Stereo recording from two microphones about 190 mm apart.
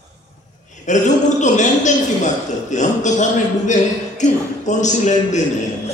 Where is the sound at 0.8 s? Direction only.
40° left (ahead or behind).